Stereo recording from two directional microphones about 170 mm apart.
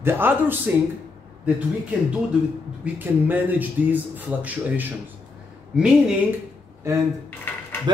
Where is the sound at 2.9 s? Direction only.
10° right (ahead or behind).